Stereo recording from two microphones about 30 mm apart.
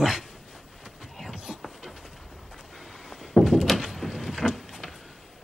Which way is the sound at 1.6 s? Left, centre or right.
Centre.